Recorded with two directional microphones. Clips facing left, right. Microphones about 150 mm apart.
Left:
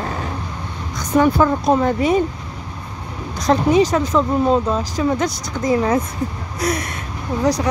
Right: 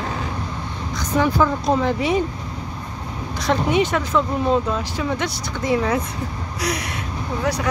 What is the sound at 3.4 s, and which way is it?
A woman's voice, 35° left (ahead or behind).